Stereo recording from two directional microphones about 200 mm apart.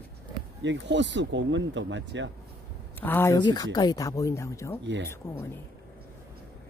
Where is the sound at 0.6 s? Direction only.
65° right (ahead or behind).